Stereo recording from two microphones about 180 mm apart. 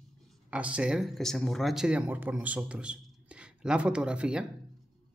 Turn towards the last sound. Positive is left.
turn(degrees=-5)  # may be behind; listen again after turning